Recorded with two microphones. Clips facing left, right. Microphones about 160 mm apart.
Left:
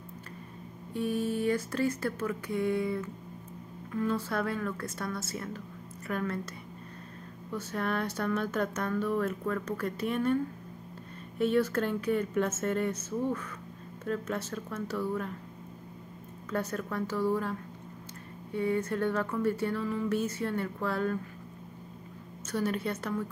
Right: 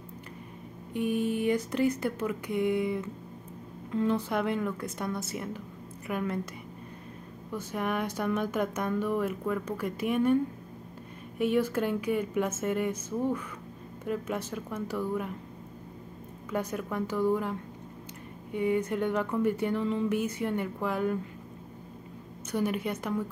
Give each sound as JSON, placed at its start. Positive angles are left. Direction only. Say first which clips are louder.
{"t": 0.9, "sound": "speech", "louder": "right 2 dB", "side_deg": -15}
{"t": 7.5, "sound": "speech", "louder": "right 1 dB", "side_deg": -15}
{"t": 16.4, "sound": "speech", "louder": "right 1 dB", "side_deg": -15}
{"t": 22.5, "sound": "speech", "louder": "right 1 dB", "side_deg": -15}